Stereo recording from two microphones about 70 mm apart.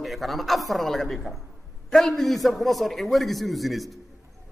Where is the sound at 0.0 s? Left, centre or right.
Centre.